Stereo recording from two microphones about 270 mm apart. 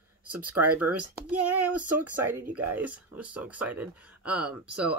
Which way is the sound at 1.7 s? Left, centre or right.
Right.